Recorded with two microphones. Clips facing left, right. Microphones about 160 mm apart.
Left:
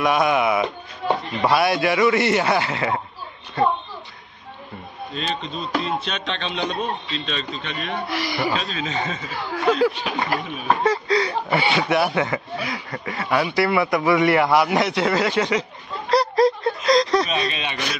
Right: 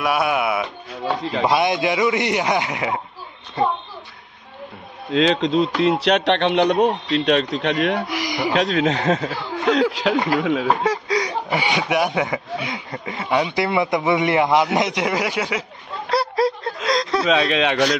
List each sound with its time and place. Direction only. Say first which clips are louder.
0.0 s speech: left 1 dB; 10° right (ahead or behind)
1.4 s speech: even; 20° right (ahead or behind)
5.1 s speech: right 12 dB; 90° right
8.1 s speech: right 1 dB; 15° right (ahead or behind)
8.5 s speech: right 7 dB; 75° right (ahead or behind)
10.8 s speech: left 1 dB; 10° right (ahead or behind)
16.1 s a sound: left 3 dB; 5° right (ahead or behind)
17.3 s speech: right 8 dB; 90° right